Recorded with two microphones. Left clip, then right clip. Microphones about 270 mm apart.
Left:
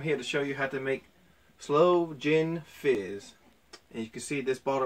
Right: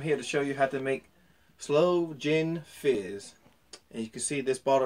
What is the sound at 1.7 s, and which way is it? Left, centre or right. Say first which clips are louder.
Speech: left 1 dB; centre.